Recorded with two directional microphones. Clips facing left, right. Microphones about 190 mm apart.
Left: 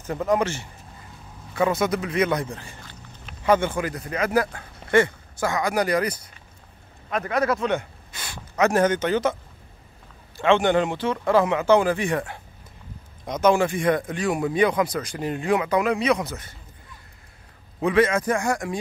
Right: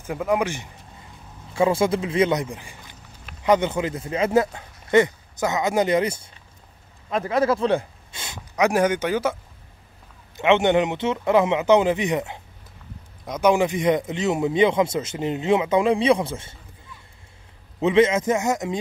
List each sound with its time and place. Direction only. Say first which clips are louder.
0.0 s speech: even; 10° right (ahead or behind)
1.5 s speech: right 2 dB; 25° right (ahead or behind)
2.4 s a man's voice: even; 15° right (ahead or behind)
10.3 s speech: right 1 dB; 20° right (ahead or behind)
13.4 s speech: right 1 dB; 15° right (ahead or behind)
17.7 s speech: right 2 dB; 25° right (ahead or behind)